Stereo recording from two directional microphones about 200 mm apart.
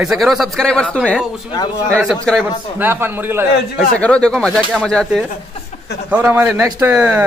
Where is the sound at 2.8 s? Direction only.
10° right (ahead or behind).